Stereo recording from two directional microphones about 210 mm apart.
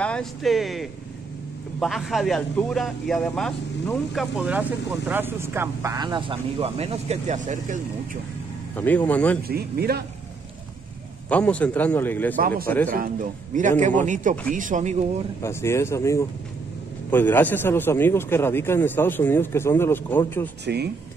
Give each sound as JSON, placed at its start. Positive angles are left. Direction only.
{"t": 0.0, "sound": "a man's voice", "side_deg": 5}
{"t": 8.7, "sound": "a man's voice", "side_deg": 5}
{"t": 9.5, "sound": "speech", "side_deg": -45}
{"t": 11.2, "sound": "a man's voice", "side_deg": 5}
{"t": 12.4, "sound": "speech", "side_deg": -40}
{"t": 12.6, "sound": "a man's voice", "side_deg": 10}
{"t": 12.9, "sound": "a man's voice", "side_deg": -40}
{"t": 15.4, "sound": "a man's voice", "side_deg": 10}
{"t": 20.6, "sound": "speech", "side_deg": -50}